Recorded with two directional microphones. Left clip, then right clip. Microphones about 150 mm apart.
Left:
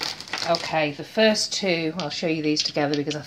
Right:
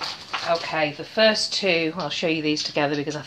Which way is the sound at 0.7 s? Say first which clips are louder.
Even; 50° left (ahead or behind).